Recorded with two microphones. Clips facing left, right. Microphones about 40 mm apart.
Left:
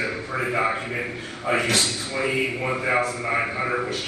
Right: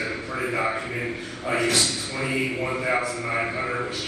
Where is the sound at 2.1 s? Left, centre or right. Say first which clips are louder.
Left 2 dB; centre.